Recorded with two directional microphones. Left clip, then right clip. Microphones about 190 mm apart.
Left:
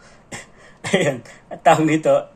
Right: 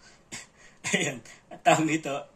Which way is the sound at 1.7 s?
15° left (ahead or behind).